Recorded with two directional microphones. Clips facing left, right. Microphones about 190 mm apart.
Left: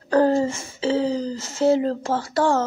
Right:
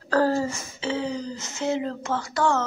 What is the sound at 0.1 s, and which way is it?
Speech, 20° left (ahead or behind).